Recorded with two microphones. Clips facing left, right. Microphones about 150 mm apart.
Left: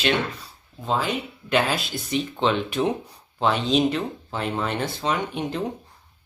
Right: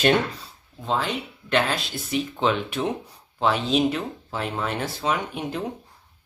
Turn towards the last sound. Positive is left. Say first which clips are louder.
# left 2 dB
turn(degrees=-5)  # may be behind; listen again after turning